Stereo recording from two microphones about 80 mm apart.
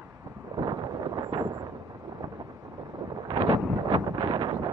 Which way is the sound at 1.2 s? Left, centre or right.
Right.